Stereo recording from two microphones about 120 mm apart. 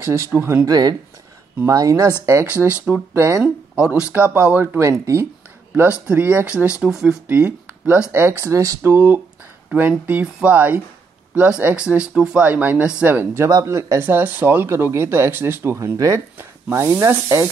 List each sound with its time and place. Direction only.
0.0 s speech: 25° right (ahead or behind)
0.7 s speech: 35° right (ahead or behind)
3.4 s speech: 5° right (ahead or behind); by 5.2 s 25° right (ahead or behind)
5.8 s speech: 15° right (ahead or behind)
7.2 s speech: 15° right (ahead or behind)